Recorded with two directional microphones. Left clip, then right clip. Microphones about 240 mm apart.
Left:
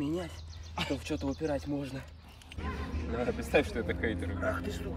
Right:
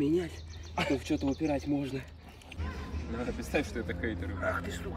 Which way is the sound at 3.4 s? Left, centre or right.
Centre.